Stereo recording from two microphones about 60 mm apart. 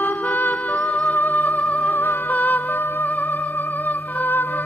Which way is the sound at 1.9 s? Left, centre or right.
Left.